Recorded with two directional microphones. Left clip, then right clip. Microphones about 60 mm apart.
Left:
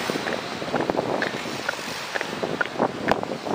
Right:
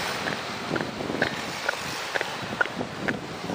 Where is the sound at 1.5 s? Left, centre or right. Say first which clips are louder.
Left 1 dB; right.